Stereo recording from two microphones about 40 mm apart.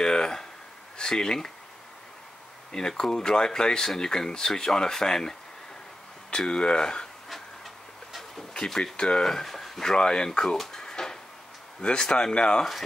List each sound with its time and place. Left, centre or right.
0.0 s a sound: centre
1.1 s speech: centre
3.0 s speech: centre
6.3 s speech: left
7.2 s fowl: centre
8.6 s speech: centre
8.9 s speech: left
9.2 s speech: centre
9.9 s speech: left
10.6 s drawer open or close: centre
11.8 s speech: left